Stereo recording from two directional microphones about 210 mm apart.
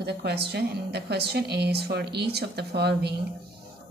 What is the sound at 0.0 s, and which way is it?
A woman's voice, 50° right (ahead or behind).